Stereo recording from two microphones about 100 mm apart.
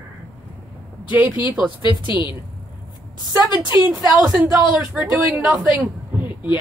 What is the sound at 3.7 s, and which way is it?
Speech, 20° right (ahead or behind).